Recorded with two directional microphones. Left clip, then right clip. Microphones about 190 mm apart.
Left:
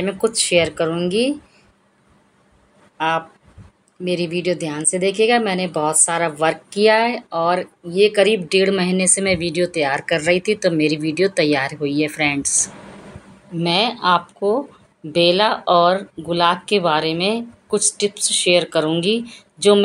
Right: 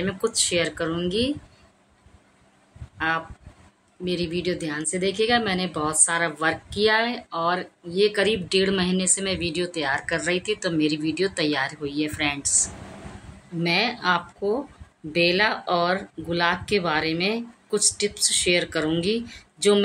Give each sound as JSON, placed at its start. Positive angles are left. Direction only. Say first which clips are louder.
{"t": 0.0, "sound": "speech", "louder": "left 5 dB", "side_deg": 15}
{"t": 3.0, "sound": "speech", "louder": "left 5 dB", "side_deg": 15}